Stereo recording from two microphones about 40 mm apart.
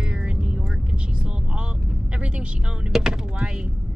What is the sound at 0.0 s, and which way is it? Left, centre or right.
Vehicle, right.